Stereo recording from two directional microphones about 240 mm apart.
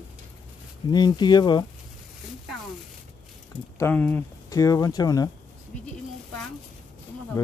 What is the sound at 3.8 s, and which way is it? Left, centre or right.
Speech, centre.